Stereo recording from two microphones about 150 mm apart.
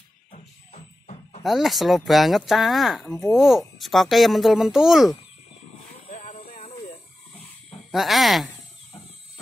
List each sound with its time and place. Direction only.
0.3 s music: 55° left (ahead or behind)
1.4 s speech: centre (ahead or behind)
6.0 s a sound: 45° left (ahead or behind)
7.9 s speech: centre (ahead or behind)